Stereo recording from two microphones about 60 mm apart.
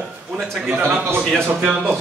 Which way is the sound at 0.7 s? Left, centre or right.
Right.